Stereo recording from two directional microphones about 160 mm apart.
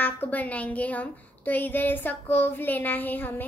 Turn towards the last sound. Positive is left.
turn(degrees=10)  # may be behind; listen again after turning